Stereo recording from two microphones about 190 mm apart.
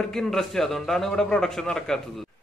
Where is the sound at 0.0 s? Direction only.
Centre (ahead or behind).